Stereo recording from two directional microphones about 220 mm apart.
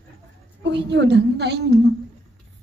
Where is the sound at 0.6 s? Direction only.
55° right (ahead or behind).